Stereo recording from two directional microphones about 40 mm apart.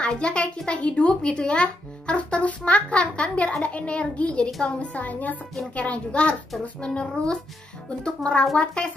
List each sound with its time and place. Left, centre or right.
0.0 s a woman's voice: left